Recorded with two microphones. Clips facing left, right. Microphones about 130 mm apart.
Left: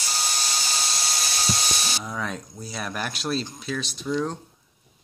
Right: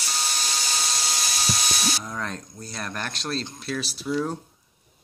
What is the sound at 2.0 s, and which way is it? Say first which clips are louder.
Speech: left 1 dB; 5° left (ahead or behind).